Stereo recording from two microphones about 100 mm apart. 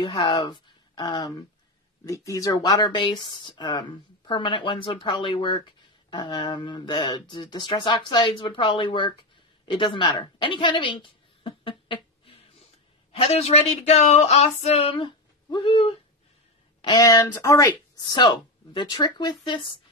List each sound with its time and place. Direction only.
0.0 s speech: 50° left (ahead or behind)
2.0 s speech: 35° left (ahead or behind); by 12.4 s 60° left (ahead or behind)
13.1 s female singing: 90° left
15.0 s speech: 50° left (ahead or behind)
16.8 s speech: 40° left (ahead or behind)
18.1 s speech: 50° left (ahead or behind)